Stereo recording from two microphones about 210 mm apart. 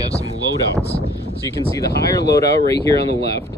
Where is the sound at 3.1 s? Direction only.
50° left (ahead or behind).